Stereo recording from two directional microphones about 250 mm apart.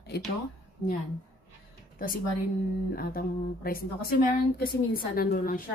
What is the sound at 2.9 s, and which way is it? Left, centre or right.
Speech, left.